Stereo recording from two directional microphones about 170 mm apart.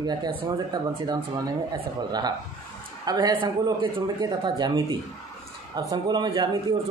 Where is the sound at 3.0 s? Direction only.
25° right (ahead or behind).